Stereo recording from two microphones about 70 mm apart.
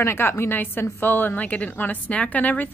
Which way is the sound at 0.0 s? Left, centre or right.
Left.